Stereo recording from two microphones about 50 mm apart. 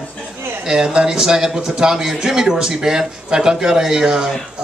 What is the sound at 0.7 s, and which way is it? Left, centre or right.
A man's voice, centre.